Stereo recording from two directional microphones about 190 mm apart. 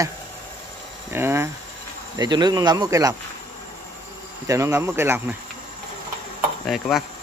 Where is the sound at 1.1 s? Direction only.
10° right (ahead or behind).